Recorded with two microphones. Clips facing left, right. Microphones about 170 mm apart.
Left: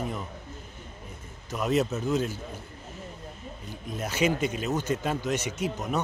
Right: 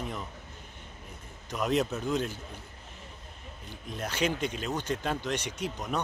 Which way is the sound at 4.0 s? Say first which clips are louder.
Left 4 dB; 5° left (ahead or behind).